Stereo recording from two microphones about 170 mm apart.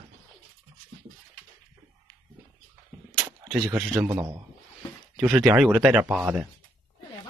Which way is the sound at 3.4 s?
Centre (ahead or behind).